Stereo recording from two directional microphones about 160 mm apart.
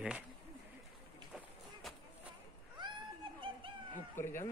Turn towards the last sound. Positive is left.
turn(degrees=15)  # may be behind; listen again after turning